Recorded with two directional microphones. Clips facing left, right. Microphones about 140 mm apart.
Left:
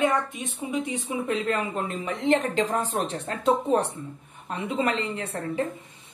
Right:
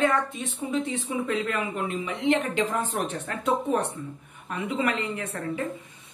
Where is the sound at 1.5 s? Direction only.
35° left (ahead or behind).